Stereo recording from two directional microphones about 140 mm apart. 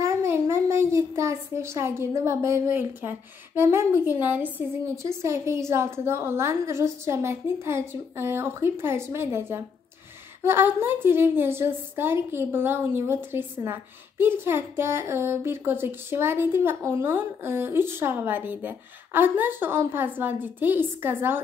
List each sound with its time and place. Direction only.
0.0 s a child's voice: 20° right (ahead or behind)